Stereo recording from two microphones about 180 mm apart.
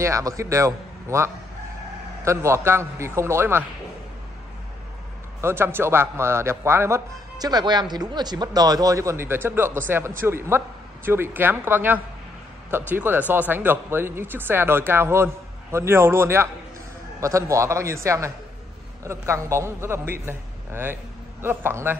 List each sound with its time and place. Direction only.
0.0 s speech: 20° right (ahead or behind)
5.4 s speech: 15° right (ahead or behind)